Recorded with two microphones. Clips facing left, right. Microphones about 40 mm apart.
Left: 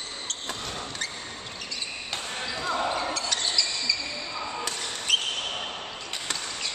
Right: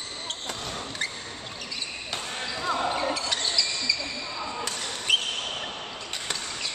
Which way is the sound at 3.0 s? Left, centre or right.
Centre.